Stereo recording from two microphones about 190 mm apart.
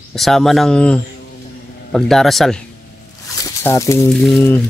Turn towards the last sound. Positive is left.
turn(degrees=0)  # may be behind; listen again after turning